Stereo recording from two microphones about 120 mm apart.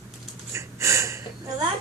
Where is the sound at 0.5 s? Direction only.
25° right (ahead or behind).